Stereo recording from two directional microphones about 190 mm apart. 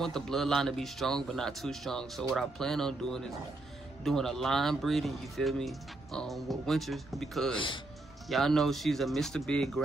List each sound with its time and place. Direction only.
0.0 s speech: centre (ahead or behind)
7.5 s speech: 25° left (ahead or behind)
8.3 s speech: centre (ahead or behind)